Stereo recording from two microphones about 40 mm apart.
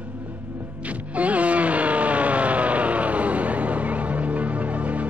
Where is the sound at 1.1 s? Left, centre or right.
Right.